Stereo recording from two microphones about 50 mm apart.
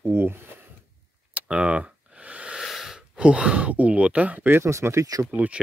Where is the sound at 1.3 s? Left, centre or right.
Right.